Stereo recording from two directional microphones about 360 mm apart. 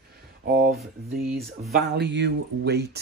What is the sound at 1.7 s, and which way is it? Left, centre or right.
Speech, right.